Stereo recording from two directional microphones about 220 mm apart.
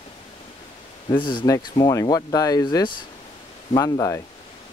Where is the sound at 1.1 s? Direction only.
20° left (ahead or behind).